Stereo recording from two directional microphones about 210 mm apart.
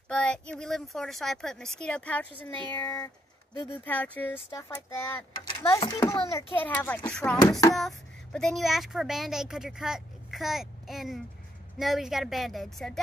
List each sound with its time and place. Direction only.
0.1 s a child's voice: 5° left (ahead or behind)